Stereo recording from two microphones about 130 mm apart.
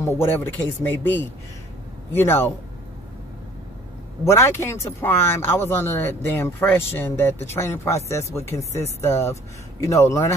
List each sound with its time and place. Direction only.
0.3 s speech: 15° left (ahead or behind)
4.2 s speech: 20° left (ahead or behind)